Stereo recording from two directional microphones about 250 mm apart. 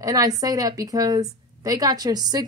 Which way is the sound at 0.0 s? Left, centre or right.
Centre.